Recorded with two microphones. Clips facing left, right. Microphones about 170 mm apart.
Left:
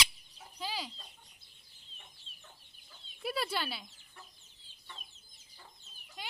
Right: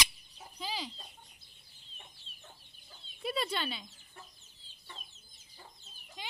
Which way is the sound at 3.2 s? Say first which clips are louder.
Right 1 dB; 5° left (ahead or behind).